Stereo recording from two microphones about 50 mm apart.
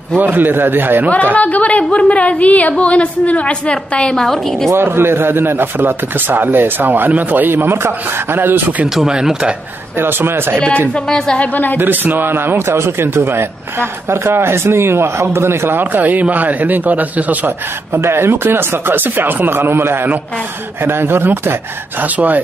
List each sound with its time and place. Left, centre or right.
0.2 s a man's voice: right
1.3 s a woman's voice: left; by 4.6 s centre
4.7 s a man's voice: right
8.8 s speech: centre
9.9 s speech: right
10.9 s a woman's voice: centre
11.4 s speech: left
11.8 s speech: right
15.8 s a man's voice: right
18.0 s speech: right
22.0 s a man's voice: right